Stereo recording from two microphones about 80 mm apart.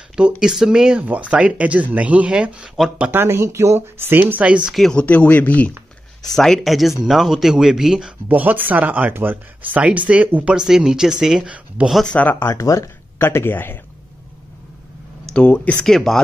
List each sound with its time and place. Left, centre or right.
0.4 s speech: centre
3.1 s speech: right; by 4.7 s centre
4.7 s speech: centre
5.0 s speech: centre
6.2 s speech: centre
8.3 s speech: right
10.5 s speech: centre
12.1 s speech: centre
12.4 s speech: left
15.2 s a sound: centre
15.5 s speech: centre
15.8 s speech: centre